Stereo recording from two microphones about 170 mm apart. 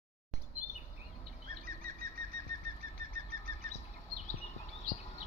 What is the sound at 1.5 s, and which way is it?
Bird flight, 60° right (ahead or behind).